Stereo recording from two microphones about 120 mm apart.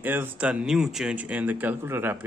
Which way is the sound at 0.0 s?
15° right (ahead or behind).